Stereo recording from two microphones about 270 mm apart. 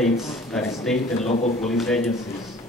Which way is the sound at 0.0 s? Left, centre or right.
Centre.